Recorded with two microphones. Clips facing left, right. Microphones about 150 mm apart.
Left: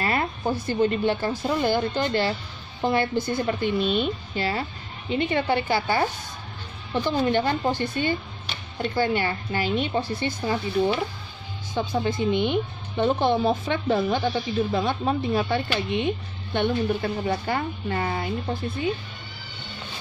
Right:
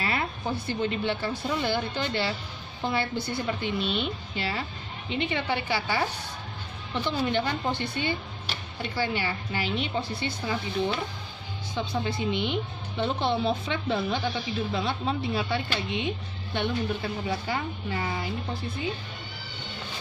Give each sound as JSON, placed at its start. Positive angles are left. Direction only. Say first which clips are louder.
{"t": 0.0, "sound": "a woman's voice", "louder": "left 4 dB", "side_deg": 45}
{"t": 7.1, "sound": "a woman's voice", "louder": "left 5 dB", "side_deg": 45}
{"t": 11.7, "sound": "a woman's voice", "louder": "left 5 dB", "side_deg": 45}